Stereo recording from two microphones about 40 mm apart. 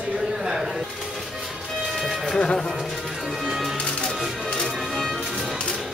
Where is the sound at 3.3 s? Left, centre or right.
Centre.